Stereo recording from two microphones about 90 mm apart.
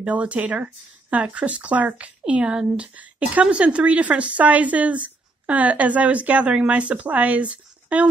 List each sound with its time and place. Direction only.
0.0 s speech: 15° right (ahead or behind)